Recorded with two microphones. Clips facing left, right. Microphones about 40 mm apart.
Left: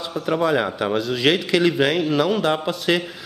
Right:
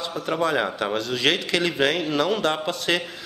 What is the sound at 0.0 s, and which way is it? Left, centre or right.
A man's voice, centre.